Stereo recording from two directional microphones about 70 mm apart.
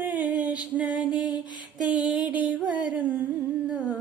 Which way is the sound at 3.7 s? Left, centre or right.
Centre.